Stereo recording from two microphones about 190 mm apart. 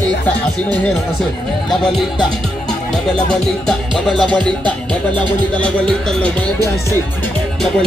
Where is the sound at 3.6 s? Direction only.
5° left (ahead or behind).